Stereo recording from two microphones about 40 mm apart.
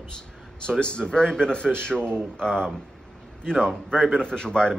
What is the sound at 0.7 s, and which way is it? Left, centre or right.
A man's voice, left.